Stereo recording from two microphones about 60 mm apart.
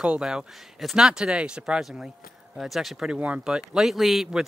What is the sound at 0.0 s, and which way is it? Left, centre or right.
Speech, centre.